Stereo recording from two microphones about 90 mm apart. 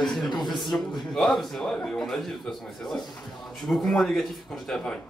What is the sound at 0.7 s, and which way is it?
Speech, 25° left (ahead or behind).